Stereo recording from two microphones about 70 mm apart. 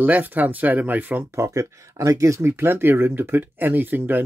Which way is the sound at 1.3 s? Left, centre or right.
Right.